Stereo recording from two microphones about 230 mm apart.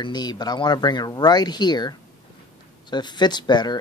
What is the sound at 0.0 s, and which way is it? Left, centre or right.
Speech, centre.